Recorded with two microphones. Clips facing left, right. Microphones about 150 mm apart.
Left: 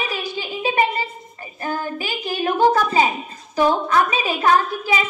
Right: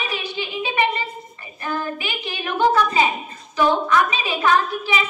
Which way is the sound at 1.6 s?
40° left (ahead or behind).